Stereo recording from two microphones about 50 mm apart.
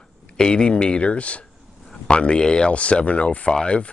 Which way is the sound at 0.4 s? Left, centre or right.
Centre.